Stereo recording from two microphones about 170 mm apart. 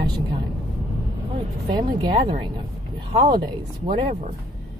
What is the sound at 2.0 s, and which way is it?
A woman's voice, 25° right (ahead or behind).